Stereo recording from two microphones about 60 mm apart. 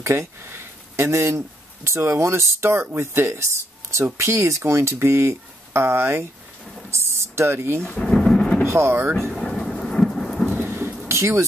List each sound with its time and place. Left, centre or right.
0.0 s speech: right
8.0 s thunder: centre
8.6 s speech: right
9.4 s thunder: centre
10.6 s thunder: right
11.1 s speech: right